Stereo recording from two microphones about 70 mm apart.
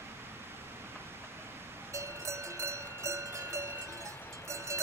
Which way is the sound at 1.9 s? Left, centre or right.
Right.